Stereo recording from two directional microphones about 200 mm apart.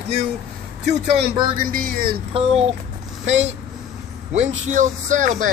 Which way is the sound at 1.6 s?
45° right (ahead or behind).